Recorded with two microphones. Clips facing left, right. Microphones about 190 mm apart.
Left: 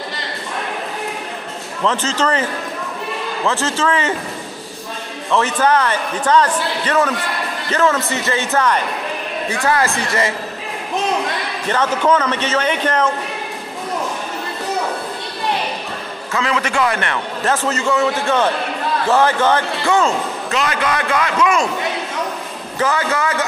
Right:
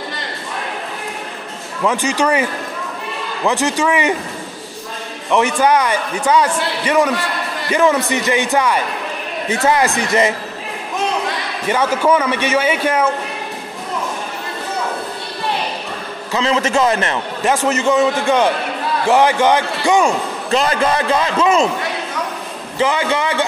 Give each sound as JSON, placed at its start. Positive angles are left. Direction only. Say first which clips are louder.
{"t": 1.9, "sound": "a man's voice", "louder": "right 2 dB", "side_deg": -15}
{"t": 3.4, "sound": "a man's voice", "louder": "right 3 dB", "side_deg": -15}
{"t": 5.3, "sound": "a man's voice", "louder": "right 2 dB", "side_deg": -15}
{"t": 11.7, "sound": "a man's voice", "louder": "right 1 dB", "side_deg": -10}
{"t": 16.3, "sound": "a man's voice", "louder": "right 3 dB", "side_deg": -25}
{"t": 20.5, "sound": "a man's voice", "louder": "right 4 dB", "side_deg": -35}
{"t": 22.8, "sound": "a man's voice", "louder": "right 2 dB", "side_deg": -20}